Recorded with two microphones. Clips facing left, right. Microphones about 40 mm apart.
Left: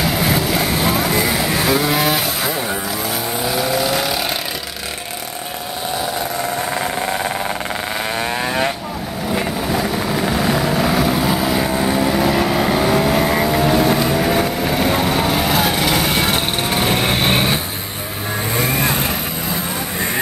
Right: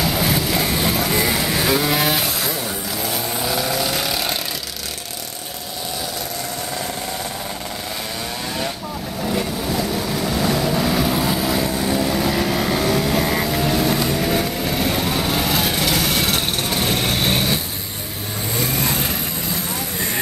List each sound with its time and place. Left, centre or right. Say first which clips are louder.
0.0 s vehicle: left 2 dB; centre
3.4 s vehicle: left 4 dB; centre
8.2 s vehicle: left 7 dB; left
9.3 s vehicle: left 3 dB; left
18.6 s vehicle: left 3 dB; left